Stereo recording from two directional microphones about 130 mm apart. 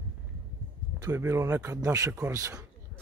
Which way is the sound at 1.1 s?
20° right (ahead or behind).